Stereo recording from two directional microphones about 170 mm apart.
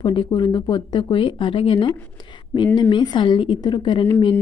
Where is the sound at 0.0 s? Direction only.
30° left (ahead or behind).